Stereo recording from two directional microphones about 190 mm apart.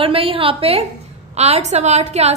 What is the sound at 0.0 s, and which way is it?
A woman's voice, 30° right (ahead or behind).